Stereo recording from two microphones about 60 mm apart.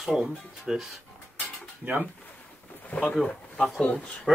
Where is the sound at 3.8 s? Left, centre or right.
Centre.